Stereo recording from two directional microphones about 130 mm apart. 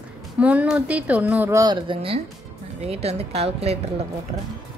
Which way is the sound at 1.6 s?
35° right (ahead or behind).